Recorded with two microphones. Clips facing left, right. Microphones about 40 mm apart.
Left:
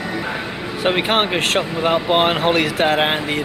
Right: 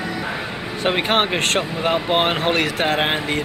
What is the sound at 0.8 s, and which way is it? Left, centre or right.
Speech, centre.